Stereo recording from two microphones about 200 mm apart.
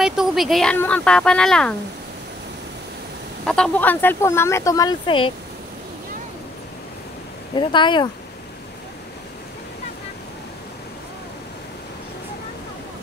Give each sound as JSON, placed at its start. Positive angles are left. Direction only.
{"t": 0.0, "sound": "speech", "side_deg": 0}
{"t": 3.4, "sound": "speech", "side_deg": 5}
{"t": 7.5, "sound": "speech", "side_deg": 25}